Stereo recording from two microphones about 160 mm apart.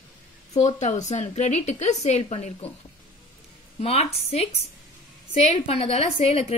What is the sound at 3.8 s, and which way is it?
A woman's voice, 40° left (ahead or behind).